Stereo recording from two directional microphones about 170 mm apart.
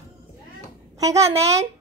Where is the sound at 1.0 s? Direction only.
15° right (ahead or behind).